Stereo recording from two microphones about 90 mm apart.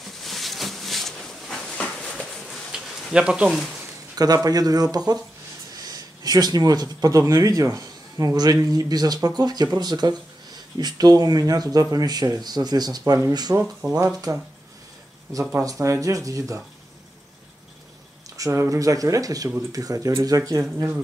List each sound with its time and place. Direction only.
0.2 s a sound: centre (ahead or behind)
3.1 s speech: 10° right (ahead or behind)
4.1 s speech: 45° right (ahead or behind)
15.6 s speech: 35° right (ahead or behind)
18.4 s speech: 35° right (ahead or behind)